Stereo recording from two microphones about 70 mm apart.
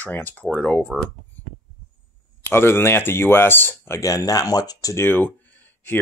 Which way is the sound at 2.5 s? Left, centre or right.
Left.